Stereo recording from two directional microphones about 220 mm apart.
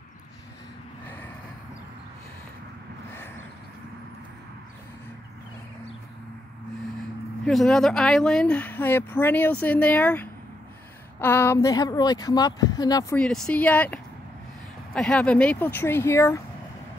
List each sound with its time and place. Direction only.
7.4 s speech: centre (ahead or behind)
13.2 s speech: 5° left (ahead or behind)
15.0 s speech: 5° left (ahead or behind)